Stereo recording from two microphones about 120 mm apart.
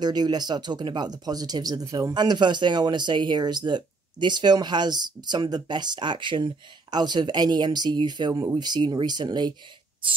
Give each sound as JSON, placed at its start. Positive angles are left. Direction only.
{"t": 0.0, "sound": "speech", "side_deg": -35}